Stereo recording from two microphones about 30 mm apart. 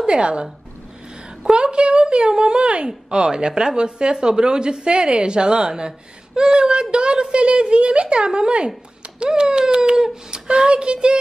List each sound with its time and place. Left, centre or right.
0.0 s a woman's voice: right
1.5 s a woman's voice: right
9.3 s a sound: right
10.5 s a woman's voice: right